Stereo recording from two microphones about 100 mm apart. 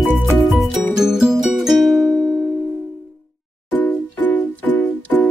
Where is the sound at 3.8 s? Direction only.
15° left (ahead or behind).